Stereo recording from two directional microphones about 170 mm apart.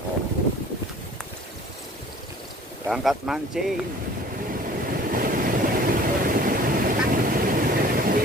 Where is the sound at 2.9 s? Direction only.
Centre (ahead or behind).